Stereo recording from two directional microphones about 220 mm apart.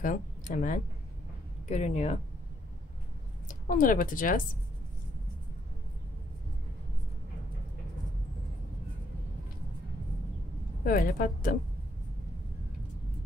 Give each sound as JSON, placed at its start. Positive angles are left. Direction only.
{"t": 0.0, "sound": "a woman's voice", "side_deg": 35}
{"t": 3.4, "sound": "speech", "side_deg": 40}
{"t": 10.8, "sound": "a woman's voice", "side_deg": 40}